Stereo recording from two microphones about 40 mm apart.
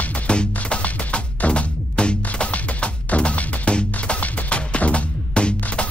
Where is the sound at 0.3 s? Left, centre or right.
Left.